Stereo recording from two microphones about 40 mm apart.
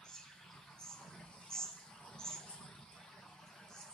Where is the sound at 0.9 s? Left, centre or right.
Centre.